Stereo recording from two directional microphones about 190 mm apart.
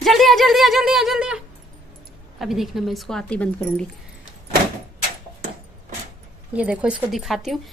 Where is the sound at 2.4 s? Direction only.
Centre (ahead or behind).